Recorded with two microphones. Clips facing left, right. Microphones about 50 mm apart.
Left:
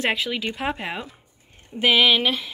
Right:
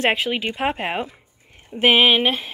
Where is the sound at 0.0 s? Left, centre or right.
Right.